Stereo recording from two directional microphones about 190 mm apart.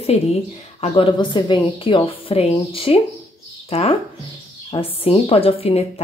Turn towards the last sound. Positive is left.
turn(degrees=30)  # may be behind; listen again after turning